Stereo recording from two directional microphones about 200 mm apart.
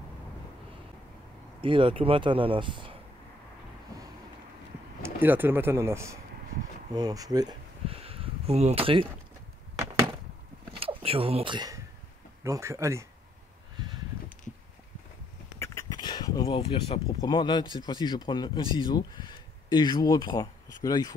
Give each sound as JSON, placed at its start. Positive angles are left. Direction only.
{"t": 1.6, "sound": "speech", "side_deg": -25}
{"t": 3.9, "sound": "a sound", "side_deg": -15}
{"t": 5.0, "sound": "speech", "side_deg": -10}
{"t": 10.8, "sound": "speech", "side_deg": -30}
{"t": 15.6, "sound": "speech", "side_deg": 15}